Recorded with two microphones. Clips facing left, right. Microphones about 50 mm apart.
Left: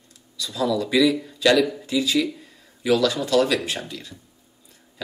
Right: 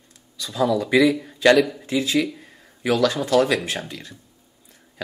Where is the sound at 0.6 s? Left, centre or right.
Right.